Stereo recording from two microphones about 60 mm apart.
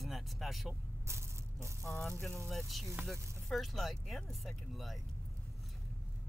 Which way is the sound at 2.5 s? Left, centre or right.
Centre.